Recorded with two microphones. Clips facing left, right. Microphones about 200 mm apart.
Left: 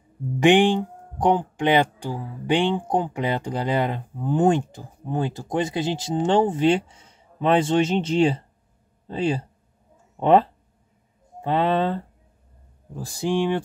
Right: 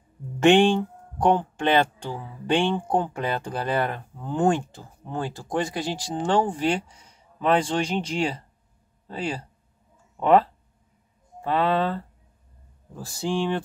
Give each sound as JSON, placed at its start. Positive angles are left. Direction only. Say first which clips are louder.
{"t": 0.4, "sound": "speech", "louder": "even", "side_deg": 15}